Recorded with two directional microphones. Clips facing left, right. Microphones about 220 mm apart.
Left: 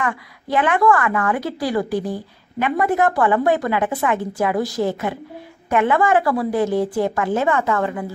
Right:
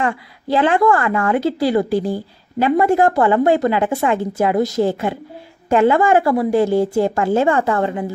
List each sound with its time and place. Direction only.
0.0 s a woman's voice: 30° right (ahead or behind)